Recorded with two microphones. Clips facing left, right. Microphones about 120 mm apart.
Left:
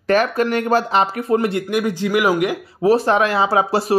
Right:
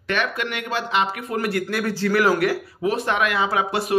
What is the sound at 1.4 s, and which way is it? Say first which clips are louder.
Speech: left 4 dB; 25° left (ahead or behind).